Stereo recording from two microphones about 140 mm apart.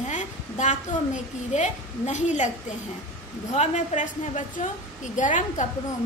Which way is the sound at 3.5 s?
50° left (ahead or behind).